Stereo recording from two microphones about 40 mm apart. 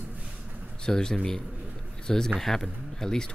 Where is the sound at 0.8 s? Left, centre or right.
Centre.